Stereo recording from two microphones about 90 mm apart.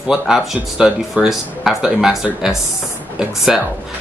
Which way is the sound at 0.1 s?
5° right (ahead or behind).